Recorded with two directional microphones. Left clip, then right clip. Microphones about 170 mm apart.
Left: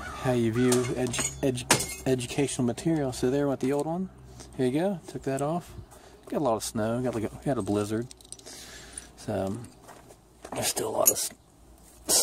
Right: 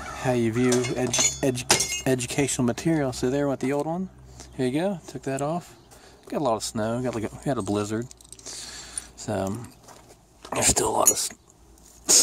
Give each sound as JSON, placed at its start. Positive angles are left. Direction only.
{"t": 0.1, "sound": "speech", "side_deg": 0}